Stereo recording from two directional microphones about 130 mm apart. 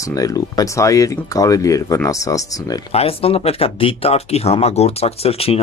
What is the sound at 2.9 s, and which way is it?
Speech, 50° left (ahead or behind).